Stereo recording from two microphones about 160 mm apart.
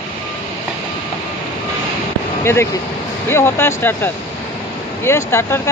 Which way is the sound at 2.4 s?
15° left (ahead or behind).